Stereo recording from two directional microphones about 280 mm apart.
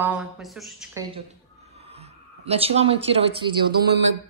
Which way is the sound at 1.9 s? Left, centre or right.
Right.